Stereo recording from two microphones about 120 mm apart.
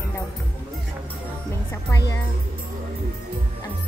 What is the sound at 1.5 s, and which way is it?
Music, 20° left (ahead or behind).